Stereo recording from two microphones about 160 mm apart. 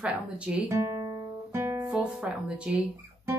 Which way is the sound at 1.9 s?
5° right (ahead or behind).